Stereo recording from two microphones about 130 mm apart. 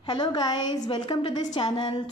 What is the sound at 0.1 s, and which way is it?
A woman's voice, 35° left (ahead or behind).